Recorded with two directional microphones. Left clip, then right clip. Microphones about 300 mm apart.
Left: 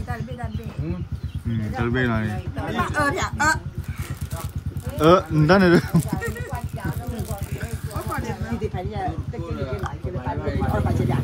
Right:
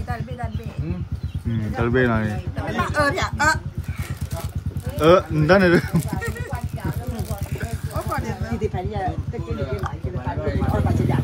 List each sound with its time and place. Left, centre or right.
1.8 s speech: centre
4.9 s speech: centre
7.9 s vehicle: centre
10.4 s vehicle: centre